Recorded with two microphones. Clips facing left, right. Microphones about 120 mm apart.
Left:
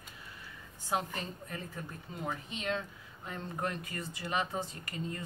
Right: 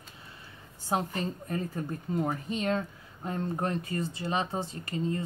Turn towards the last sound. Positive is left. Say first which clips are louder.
# right 8 dB
turn(degrees=-30)  # may be behind; listen again after turning